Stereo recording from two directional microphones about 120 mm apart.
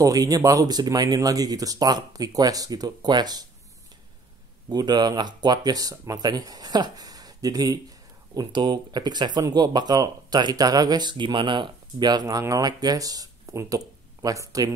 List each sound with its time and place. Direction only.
0.0 s speech: 30° right (ahead or behind)
4.6 s speech: 35° right (ahead or behind)